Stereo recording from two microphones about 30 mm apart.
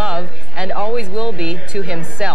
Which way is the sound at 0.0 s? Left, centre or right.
Right.